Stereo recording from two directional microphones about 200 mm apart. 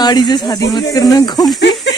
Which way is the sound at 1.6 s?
60° left (ahead or behind).